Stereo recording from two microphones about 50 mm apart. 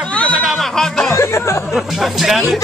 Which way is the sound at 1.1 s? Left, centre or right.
Left.